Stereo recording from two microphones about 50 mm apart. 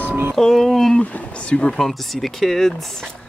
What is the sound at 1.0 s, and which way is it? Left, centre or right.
Speech, left.